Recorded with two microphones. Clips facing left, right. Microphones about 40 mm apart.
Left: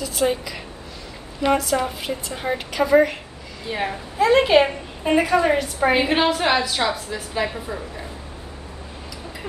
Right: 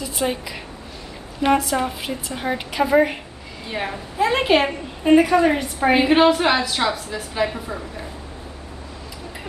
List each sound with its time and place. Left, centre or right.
0.0 s a woman's voice: centre
1.6 s a woman's voice: centre
3.6 s a woman's voice: centre
4.2 s a woman's voice: centre
4.6 s a woman's voice: centre